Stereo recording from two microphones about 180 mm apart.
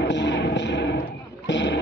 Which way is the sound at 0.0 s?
80° left.